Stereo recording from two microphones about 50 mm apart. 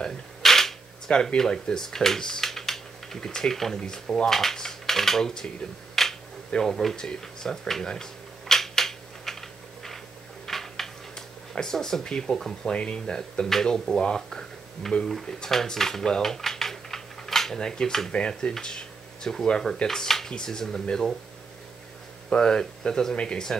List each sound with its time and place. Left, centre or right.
0.4 s speech: centre
10.4 s speech: centre
15.2 s typing: centre
17.6 s speech: centre
22.3 s speech: centre